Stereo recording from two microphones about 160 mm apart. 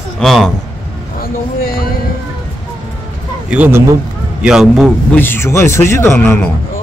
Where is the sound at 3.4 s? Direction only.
10° right (ahead or behind).